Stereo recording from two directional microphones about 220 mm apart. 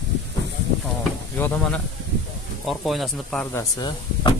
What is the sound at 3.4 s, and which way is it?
Speech, 15° left (ahead or behind).